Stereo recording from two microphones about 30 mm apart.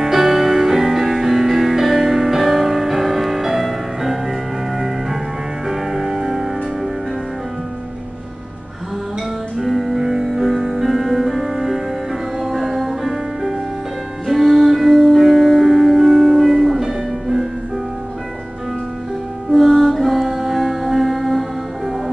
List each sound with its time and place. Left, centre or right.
0.0 s music: centre
5.7 s music: centre
9.6 s music: centre
14.2 s music: centre
19.5 s music: centre